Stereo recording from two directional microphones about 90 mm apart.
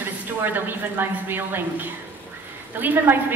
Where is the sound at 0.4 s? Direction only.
20° right (ahead or behind).